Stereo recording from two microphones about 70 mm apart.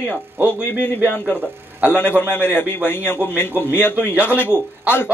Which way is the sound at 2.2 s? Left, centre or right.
Left.